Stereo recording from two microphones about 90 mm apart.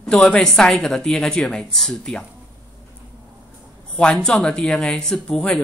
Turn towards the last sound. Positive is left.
turn(degrees=5)  # may be behind; listen again after turning